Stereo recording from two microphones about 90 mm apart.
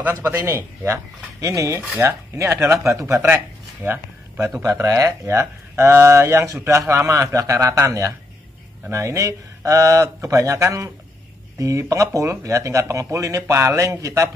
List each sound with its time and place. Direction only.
1.4 s speech: 35° right (ahead or behind)
4.6 s speech: 35° right (ahead or behind)